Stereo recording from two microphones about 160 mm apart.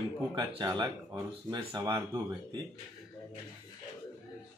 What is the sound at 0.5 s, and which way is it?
Speech, 30° right (ahead or behind).